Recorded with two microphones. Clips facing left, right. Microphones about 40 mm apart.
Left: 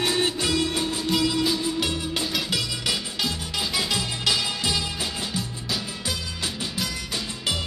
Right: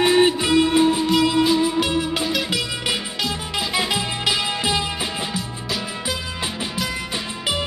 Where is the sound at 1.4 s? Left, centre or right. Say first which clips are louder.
Right 7 dB; centre.